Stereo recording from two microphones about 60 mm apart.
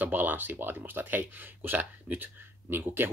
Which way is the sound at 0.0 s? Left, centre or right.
Right.